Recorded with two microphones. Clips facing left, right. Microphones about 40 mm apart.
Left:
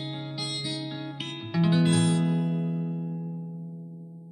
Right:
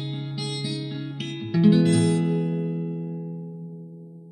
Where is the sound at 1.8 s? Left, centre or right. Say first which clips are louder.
Right 3 dB; left.